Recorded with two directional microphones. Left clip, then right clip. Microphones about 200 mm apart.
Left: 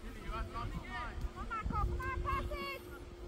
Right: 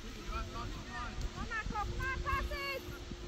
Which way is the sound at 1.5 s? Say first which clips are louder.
Even; 55° left (ahead or behind).